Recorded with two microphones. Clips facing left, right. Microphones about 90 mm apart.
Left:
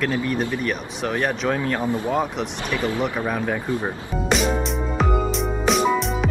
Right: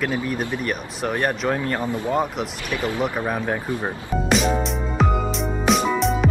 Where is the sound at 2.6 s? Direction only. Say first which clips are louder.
Left 2 dB; 35° left (ahead or behind).